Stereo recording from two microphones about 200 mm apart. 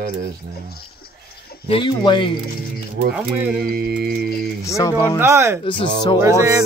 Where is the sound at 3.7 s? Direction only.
50° right (ahead or behind).